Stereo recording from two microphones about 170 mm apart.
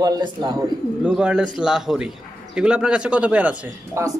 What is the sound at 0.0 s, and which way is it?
Speech, 25° right (ahead or behind).